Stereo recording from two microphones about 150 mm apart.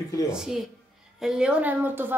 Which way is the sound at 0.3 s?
5° right (ahead or behind).